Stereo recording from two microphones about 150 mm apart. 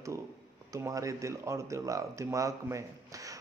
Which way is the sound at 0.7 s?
20° right (ahead or behind).